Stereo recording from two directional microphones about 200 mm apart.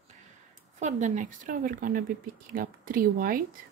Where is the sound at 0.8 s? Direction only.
35° right (ahead or behind).